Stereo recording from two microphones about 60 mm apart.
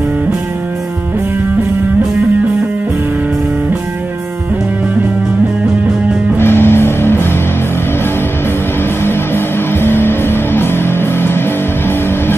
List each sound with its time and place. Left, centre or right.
6.3 s music: left
9.0 s music: left